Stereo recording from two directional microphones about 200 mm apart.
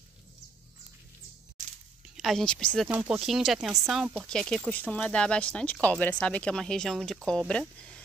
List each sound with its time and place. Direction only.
2.1 s speech: centre (ahead or behind)